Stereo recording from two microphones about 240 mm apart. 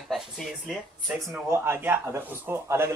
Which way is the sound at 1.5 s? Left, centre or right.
Centre.